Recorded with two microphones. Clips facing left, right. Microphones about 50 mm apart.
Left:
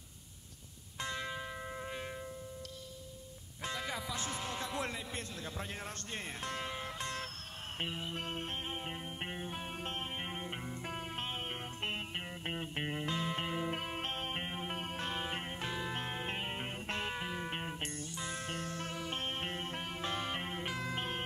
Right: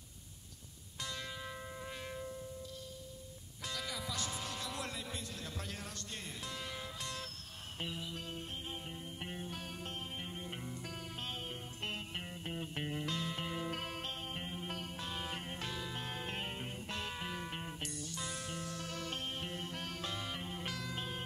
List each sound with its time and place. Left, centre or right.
0.9 s music: left
1.6 s shofar: left
3.6 s music: left
9.8 s music: left
13.9 s music: left
15.2 s music: left
16.5 s music: left
17.2 s music: centre
17.5 s music: left
19.8 s music: left
20.1 s music: left
20.6 s music: left